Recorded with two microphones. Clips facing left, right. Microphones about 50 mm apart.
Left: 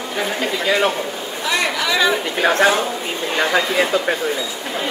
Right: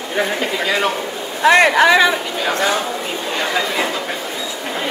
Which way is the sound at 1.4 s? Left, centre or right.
Right.